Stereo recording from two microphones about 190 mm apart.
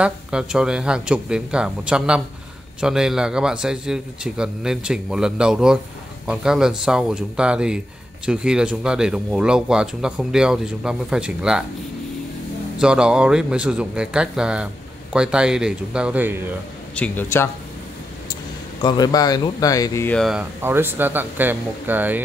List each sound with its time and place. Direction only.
0.0 s speech: 5° right (ahead or behind)
12.7 s speech: 5° right (ahead or behind)
16.9 s a man's voice: 10° left (ahead or behind)
18.8 s speech: 20° left (ahead or behind)
20.2 s speech: centre (ahead or behind)